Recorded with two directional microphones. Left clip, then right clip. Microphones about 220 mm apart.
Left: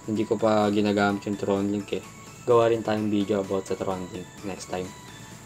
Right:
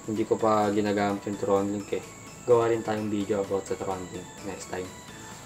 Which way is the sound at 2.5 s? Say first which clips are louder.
Left 2 dB; 15° left (ahead or behind).